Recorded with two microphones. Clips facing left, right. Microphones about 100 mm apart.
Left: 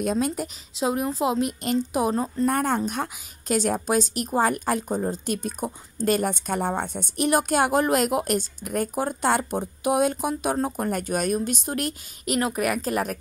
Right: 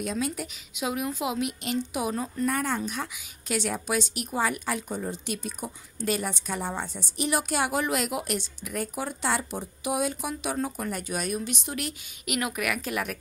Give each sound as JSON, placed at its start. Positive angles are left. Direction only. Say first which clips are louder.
{"t": 0.0, "sound": "a woman's voice", "louder": "left 6 dB", "side_deg": 45}
{"t": 12.4, "sound": "speech", "louder": "left 5 dB", "side_deg": 35}